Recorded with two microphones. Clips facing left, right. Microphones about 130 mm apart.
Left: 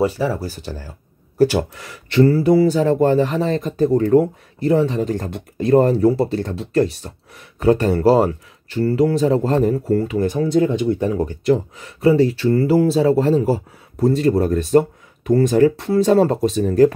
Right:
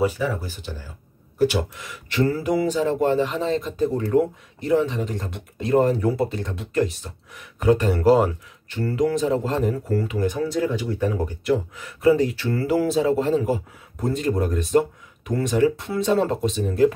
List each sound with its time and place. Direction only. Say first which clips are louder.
0.0 s speech: left 4 dB; 30° left (ahead or behind)
2.1 s speech: left 8 dB; 35° left (ahead or behind)